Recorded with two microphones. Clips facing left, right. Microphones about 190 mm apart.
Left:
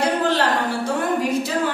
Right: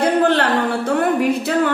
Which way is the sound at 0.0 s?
60° right (ahead or behind).